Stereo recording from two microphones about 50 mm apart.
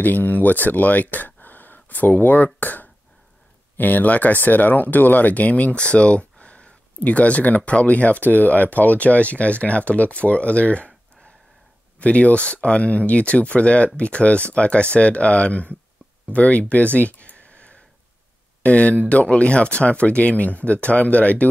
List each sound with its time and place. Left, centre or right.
0.0 s speech: left
12.0 s speech: left